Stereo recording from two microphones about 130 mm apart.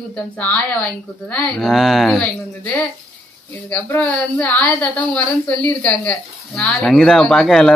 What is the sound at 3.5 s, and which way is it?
A woman's voice, 15° left (ahead or behind).